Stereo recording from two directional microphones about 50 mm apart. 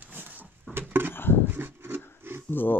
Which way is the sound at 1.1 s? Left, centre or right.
Left.